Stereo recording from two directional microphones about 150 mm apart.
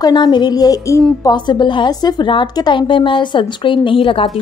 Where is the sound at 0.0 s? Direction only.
30° left (ahead or behind).